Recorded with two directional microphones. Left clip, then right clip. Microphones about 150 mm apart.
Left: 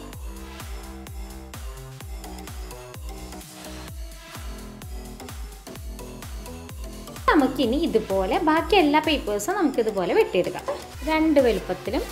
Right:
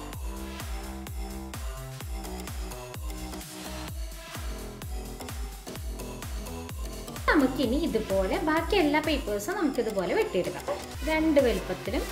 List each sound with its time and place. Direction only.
7.2 s speech: 45° left (ahead or behind)
11.1 s a woman's voice: 40° left (ahead or behind)